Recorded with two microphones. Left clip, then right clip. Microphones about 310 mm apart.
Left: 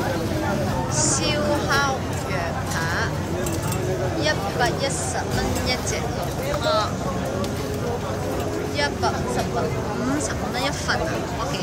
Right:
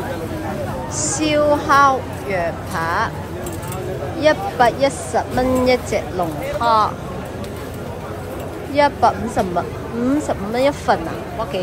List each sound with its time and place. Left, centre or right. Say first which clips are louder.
0.9 s a sound: right 7 dB; centre
4.2 s speech: right 10 dB; centre
8.7 s speech: right 11 dB; centre
10.2 s speech: right 7 dB; centre